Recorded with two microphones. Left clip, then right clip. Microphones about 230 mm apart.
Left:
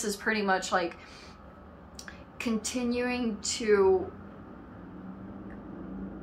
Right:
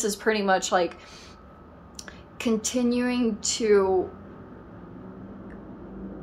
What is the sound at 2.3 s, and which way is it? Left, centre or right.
Speech, right.